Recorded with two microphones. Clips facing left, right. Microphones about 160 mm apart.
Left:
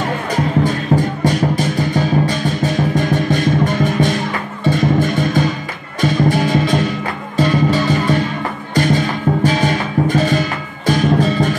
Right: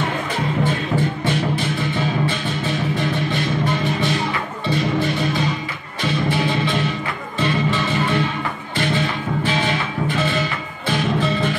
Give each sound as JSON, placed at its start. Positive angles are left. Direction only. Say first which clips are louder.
{"t": 0.7, "sound": "music", "louder": "left 4 dB", "side_deg": 40}